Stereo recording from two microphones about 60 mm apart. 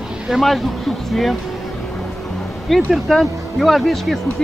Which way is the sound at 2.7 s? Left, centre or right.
Centre.